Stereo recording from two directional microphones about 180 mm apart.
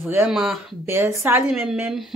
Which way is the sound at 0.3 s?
Centre (ahead or behind).